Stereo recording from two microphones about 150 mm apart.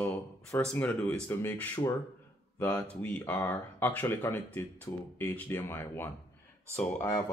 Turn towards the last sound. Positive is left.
turn(degrees=15)  # may be behind; listen again after turning